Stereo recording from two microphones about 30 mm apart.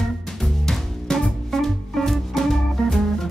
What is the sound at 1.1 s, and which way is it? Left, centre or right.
Music, left.